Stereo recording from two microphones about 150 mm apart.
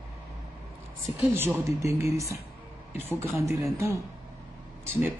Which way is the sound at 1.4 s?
15° right (ahead or behind).